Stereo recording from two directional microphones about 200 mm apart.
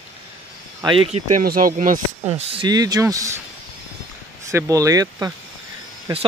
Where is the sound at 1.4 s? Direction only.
45° right (ahead or behind).